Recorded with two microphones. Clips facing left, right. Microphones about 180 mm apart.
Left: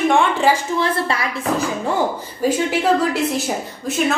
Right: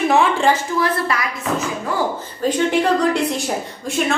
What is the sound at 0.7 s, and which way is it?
A woman's voice, 25° left (ahead or behind).